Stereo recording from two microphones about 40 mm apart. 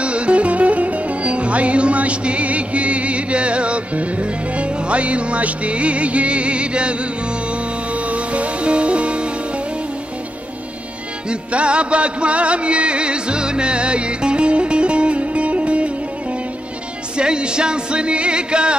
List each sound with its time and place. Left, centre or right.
0.0 s music: right
8.1 s music: right
11.2 s music: right
17.2 s music: right